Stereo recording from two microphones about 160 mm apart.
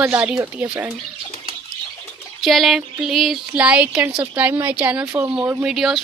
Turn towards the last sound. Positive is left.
turn(degrees=0)  # may be behind; listen again after turning